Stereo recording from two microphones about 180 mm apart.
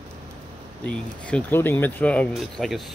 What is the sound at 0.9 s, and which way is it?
Speech, 5° left (ahead or behind).